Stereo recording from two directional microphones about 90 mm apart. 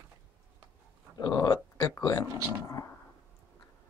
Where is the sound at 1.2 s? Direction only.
40° left (ahead or behind).